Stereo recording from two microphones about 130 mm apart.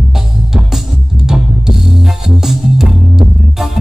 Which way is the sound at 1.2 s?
5° right (ahead or behind).